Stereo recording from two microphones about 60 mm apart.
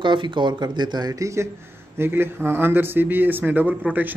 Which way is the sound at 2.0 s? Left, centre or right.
Right.